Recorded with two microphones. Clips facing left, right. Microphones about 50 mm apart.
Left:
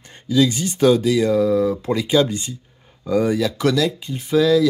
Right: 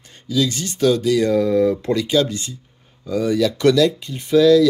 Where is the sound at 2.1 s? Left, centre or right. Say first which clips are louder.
Left 2 dB; left.